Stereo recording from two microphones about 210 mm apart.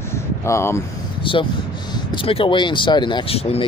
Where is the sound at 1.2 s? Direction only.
25° left (ahead or behind).